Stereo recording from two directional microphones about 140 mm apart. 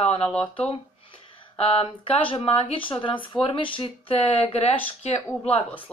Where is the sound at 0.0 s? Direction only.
45° left (ahead or behind).